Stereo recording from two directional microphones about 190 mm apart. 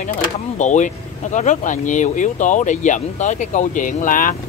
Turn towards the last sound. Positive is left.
turn(degrees=45)  # may be behind; listen again after turning